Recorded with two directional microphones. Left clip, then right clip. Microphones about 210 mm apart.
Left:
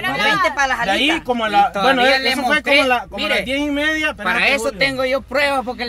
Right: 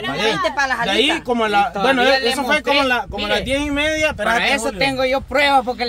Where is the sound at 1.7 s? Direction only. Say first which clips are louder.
Left 1 dB; 50° left (ahead or behind).